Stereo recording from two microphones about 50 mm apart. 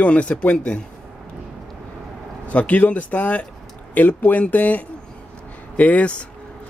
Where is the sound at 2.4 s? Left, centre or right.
Left.